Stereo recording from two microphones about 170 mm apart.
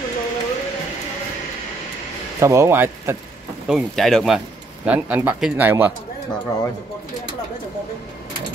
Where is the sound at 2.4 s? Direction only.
15° right (ahead or behind).